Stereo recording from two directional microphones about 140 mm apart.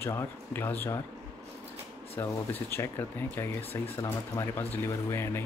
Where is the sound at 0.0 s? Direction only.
20° left (ahead or behind).